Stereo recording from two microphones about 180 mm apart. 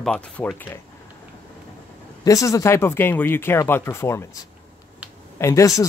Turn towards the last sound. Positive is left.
turn(degrees=20)  # may be behind; listen again after turning